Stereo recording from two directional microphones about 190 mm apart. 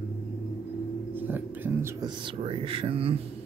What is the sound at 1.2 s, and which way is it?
Music, 10° right (ahead or behind).